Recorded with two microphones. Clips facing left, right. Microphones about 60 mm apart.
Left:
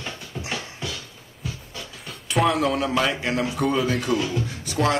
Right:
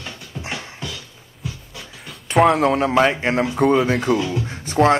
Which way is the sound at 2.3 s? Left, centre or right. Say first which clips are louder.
Right 6 dB; right.